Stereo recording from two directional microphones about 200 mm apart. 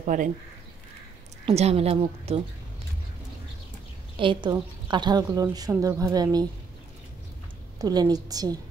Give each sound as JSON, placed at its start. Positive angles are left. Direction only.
{"t": 0.0, "sound": "speech", "side_deg": -40}
{"t": 1.4, "sound": "a woman's voice", "side_deg": -30}
{"t": 4.2, "sound": "a woman's voice", "side_deg": -25}
{"t": 7.8, "sound": "a woman's voice", "side_deg": -20}